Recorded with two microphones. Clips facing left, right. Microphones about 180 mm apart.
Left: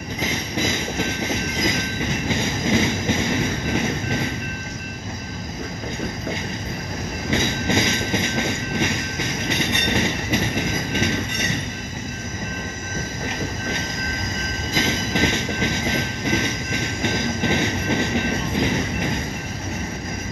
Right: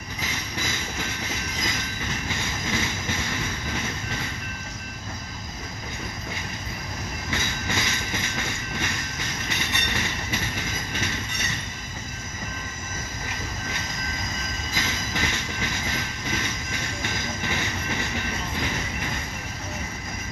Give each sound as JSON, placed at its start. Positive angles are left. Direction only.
{"t": 0.2, "sound": "train", "side_deg": 20}
{"t": 7.2, "sound": "train", "side_deg": 20}
{"t": 14.7, "sound": "train", "side_deg": 20}